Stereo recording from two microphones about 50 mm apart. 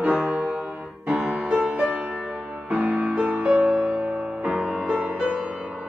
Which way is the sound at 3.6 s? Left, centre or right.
Right.